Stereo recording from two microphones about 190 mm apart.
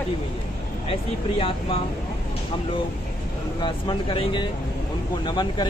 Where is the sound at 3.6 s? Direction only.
25° left (ahead or behind).